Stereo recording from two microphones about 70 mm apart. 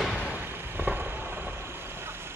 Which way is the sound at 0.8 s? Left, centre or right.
Right.